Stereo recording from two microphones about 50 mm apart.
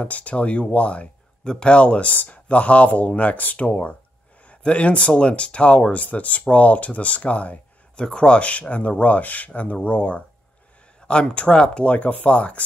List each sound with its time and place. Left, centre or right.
0.0 s speech: left